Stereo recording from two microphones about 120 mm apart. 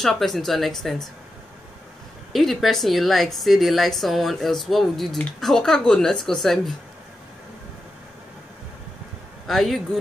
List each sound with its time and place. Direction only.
0.0 s a woman's voice: 5° left (ahead or behind)
2.3 s a woman's voice: centre (ahead or behind)
9.5 s a woman's voice: centre (ahead or behind)